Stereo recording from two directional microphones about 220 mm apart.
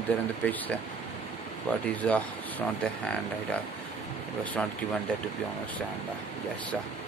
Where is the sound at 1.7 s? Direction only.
5° left (ahead or behind).